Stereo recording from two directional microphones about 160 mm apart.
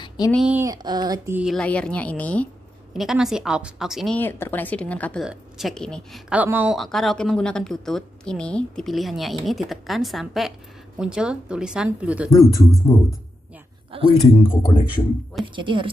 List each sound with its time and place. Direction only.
0.5 s speech: 15° right (ahead or behind)
0.8 s speech: 25° right (ahead or behind)
1.3 s a woman's voice: centre (ahead or behind)
2.9 s a woman's voice: centre (ahead or behind)
4.2 s a woman's voice: 10° left (ahead or behind)
5.2 s a woman's voice: 5° right (ahead or behind)
6.8 s a woman's voice: centre (ahead or behind)
12.9 s a woman's voice: 15° left (ahead or behind)
13.9 s speech: 35° right (ahead or behind)
14.3 s speech: 35° left (ahead or behind)
15.4 s speech: 30° right (ahead or behind)